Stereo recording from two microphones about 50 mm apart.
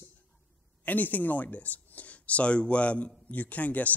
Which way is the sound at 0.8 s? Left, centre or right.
Left.